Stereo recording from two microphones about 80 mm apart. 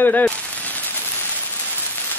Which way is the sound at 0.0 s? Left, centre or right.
Centre.